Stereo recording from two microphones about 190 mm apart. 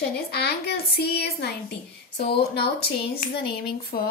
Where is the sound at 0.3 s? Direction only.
60° left (ahead or behind).